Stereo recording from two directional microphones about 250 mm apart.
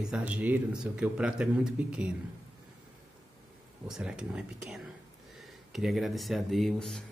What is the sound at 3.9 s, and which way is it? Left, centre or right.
Speech, centre.